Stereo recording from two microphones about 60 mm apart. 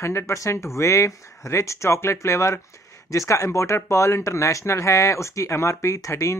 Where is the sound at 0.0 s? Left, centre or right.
Left.